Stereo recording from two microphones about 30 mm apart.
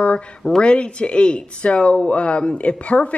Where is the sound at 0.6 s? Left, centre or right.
Left.